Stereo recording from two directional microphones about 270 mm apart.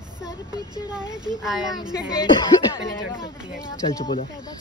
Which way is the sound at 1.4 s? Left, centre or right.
Centre.